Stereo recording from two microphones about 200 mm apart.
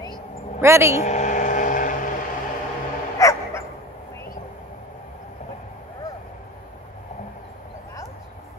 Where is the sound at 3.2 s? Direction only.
15° left (ahead or behind).